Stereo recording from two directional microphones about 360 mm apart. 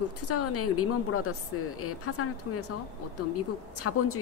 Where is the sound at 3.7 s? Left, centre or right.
Left.